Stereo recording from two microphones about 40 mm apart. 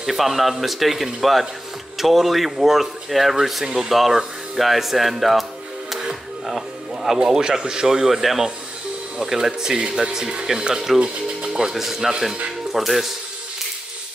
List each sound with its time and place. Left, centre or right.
0.0 s speech: centre
3.6 s speech: centre
3.9 s speech: centre
5.9 s music: centre
7.2 s speech: centre
10.0 s speech: centre